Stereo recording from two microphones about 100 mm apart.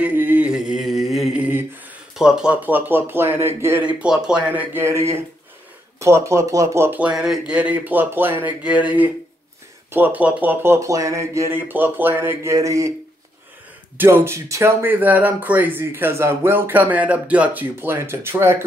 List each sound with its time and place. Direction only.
0.0 s mantra: 15° right (ahead or behind)
2.1 s speech: 10° right (ahead or behind)
4.0 s speech: 10° right (ahead or behind); by 7.0 s 25° right (ahead or behind)
7.0 s a man's voice: 5° right (ahead or behind); by 12.9 s 35° right (ahead or behind)
13.9 s speech: 25° right (ahead or behind)